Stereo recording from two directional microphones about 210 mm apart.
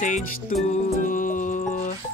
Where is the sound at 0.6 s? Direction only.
35° left (ahead or behind).